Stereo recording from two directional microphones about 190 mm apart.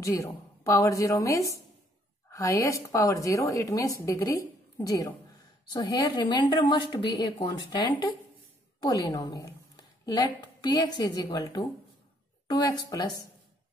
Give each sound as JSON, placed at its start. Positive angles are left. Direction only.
{"t": 0.0, "sound": "a woman's voice", "side_deg": 15}